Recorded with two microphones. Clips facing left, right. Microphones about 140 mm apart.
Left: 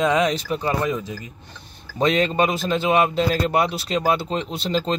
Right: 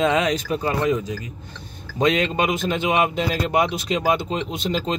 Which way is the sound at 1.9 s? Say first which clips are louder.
Left 1 dB; 35° left (ahead or behind).